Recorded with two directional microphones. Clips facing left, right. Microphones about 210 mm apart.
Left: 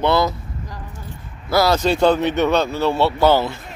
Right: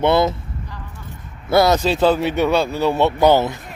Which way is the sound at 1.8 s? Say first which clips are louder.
Left 1 dB; centre (ahead or behind).